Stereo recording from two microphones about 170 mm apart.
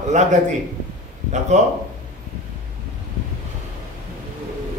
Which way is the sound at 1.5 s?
45° right (ahead or behind).